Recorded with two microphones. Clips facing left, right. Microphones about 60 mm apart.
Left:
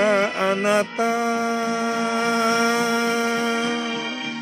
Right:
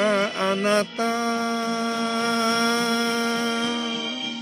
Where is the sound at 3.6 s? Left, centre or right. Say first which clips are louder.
Left 2 dB; left.